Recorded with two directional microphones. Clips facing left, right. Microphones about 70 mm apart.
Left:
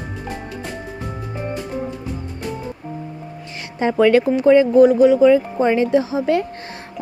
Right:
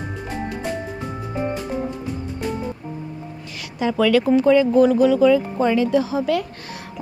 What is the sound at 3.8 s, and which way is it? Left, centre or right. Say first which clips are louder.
Speech: left 3 dB; left.